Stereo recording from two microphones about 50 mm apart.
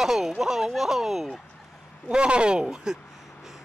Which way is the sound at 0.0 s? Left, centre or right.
Centre.